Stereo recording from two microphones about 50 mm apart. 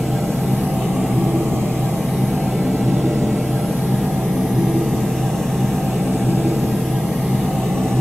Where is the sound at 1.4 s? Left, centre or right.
Right.